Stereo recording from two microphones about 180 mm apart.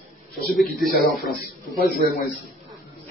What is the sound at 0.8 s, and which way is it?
Speech, centre (ahead or behind).